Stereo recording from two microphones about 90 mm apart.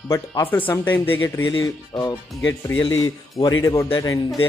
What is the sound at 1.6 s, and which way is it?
Speech, 40° left (ahead or behind).